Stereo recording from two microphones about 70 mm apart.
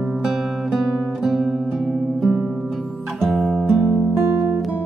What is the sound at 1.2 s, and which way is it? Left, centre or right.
Music, centre.